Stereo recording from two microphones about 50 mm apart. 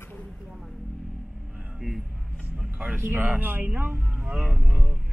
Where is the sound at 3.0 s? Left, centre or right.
Right.